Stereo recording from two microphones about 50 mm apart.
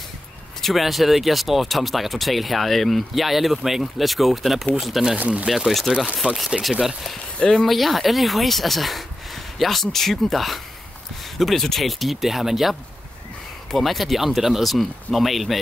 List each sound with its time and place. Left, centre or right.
0.6 s speech: centre
7.3 s speech: centre
7.6 s speech: centre
13.7 s speech: centre